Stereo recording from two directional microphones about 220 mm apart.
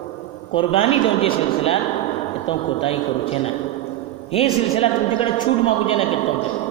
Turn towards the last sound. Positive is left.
turn(degrees=25)  # may be behind; listen again after turning